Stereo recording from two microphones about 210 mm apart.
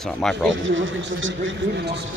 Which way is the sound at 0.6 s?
65° right (ahead or behind).